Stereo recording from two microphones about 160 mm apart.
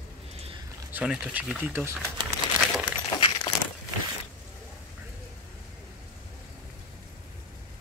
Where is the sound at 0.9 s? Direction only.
5° right (ahead or behind).